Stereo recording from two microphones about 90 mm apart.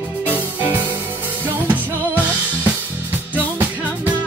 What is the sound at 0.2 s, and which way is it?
Music, 20° right (ahead or behind).